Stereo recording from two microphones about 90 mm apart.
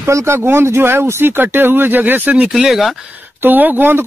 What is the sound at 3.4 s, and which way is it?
Speech, 20° right (ahead or behind).